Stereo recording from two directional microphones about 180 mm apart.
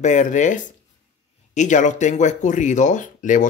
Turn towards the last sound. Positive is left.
turn(degrees=45)  # may be behind; listen again after turning